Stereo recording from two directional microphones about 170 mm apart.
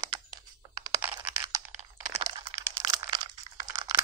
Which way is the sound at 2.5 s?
25° right (ahead or behind).